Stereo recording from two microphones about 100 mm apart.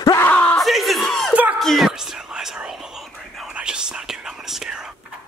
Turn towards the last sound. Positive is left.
turn(degrees=-5)  # may be behind; listen again after turning